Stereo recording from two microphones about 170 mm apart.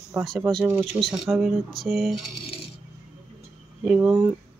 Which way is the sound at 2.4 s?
35° left (ahead or behind).